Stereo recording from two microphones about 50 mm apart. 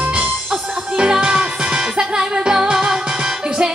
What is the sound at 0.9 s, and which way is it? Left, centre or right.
Music, centre.